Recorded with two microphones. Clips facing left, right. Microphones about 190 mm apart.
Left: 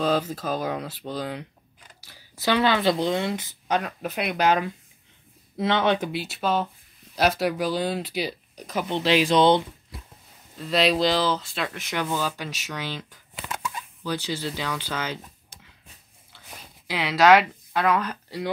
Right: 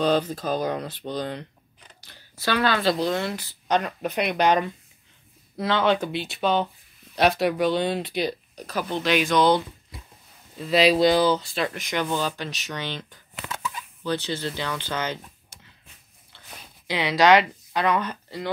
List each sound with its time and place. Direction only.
0.0 s speech: 5° left (ahead or behind)
2.0 s a sound: 5° left (ahead or behind)
2.4 s speech: 20° left (ahead or behind)
3.6 s speech: 5° left (ahead or behind)
5.6 s speech: 20° left (ahead or behind)
6.1 s speech: 5° left (ahead or behind)
8.6 s speech: 25° left (ahead or behind)
10.6 s speech: centre (ahead or behind)
14.0 s speech: 10° left (ahead or behind)
16.3 s a sound: 5° left (ahead or behind)